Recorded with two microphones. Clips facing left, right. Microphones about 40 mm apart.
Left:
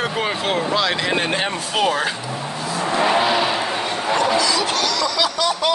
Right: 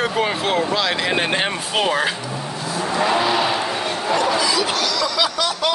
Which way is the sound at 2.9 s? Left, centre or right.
Left.